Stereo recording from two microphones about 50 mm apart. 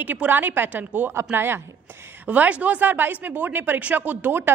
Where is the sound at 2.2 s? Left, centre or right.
Right.